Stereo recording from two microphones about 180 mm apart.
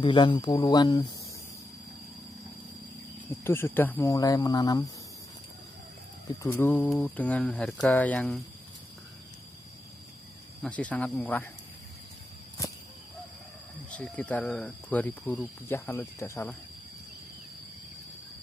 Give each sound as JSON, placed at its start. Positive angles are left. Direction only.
{"t": 0.0, "sound": "speech", "side_deg": 25}
{"t": 3.4, "sound": "speech", "side_deg": 10}
{"t": 6.2, "sound": "speech", "side_deg": 15}
{"t": 10.6, "sound": "speech", "side_deg": 5}
{"t": 13.8, "sound": "speech", "side_deg": 5}